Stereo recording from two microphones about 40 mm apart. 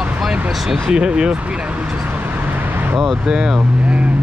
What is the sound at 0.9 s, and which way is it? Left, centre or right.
Speech, right.